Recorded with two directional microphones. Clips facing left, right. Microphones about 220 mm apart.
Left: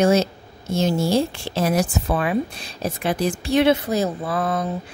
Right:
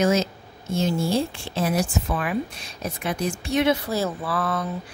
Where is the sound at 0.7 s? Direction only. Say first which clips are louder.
Left 3 dB; 90° left.